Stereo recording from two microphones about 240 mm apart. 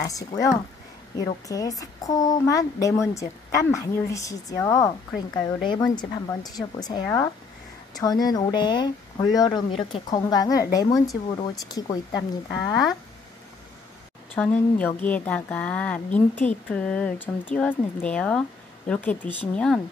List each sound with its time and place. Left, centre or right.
0.0 s a woman's voice: centre
14.3 s a woman's voice: centre